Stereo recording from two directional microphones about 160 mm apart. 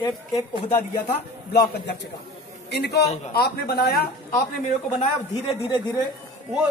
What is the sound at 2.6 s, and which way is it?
Speech, 90° left.